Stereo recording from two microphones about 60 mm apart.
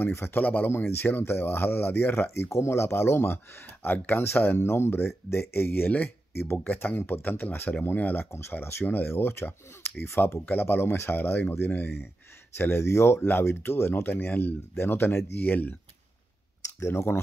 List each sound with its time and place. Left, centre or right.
0.0 s speech: left
8.3 s speech: left
14.1 s speech: left
16.6 s speech: left